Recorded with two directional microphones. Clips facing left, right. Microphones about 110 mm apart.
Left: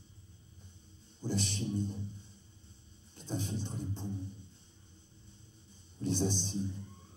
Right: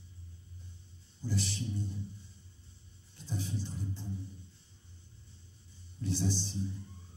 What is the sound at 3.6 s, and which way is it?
Speech, 55° left (ahead or behind).